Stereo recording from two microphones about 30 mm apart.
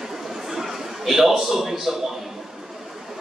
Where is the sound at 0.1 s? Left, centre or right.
Centre.